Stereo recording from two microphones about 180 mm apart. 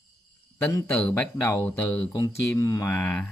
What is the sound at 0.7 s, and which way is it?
Speech, 15° left (ahead or behind).